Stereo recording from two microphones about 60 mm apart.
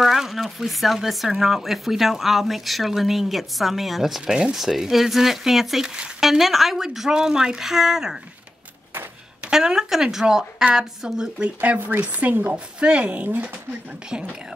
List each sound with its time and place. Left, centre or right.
0.0 s a woman's voice: centre
9.4 s a woman's voice: centre; by 13.5 s right
14.1 s a woman's voice: centre